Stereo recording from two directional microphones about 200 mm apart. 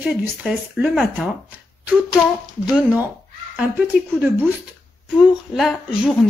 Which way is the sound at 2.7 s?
10° right (ahead or behind).